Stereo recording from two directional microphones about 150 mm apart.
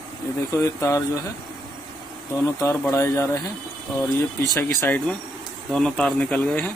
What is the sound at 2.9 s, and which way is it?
Speech, 20° left (ahead or behind).